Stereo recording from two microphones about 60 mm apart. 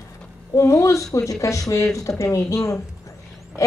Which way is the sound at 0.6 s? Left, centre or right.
Left.